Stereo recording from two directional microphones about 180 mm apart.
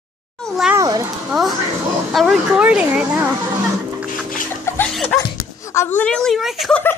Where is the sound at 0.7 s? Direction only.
20° right (ahead or behind).